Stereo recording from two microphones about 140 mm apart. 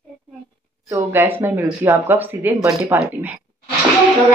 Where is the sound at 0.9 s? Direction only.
15° right (ahead or behind).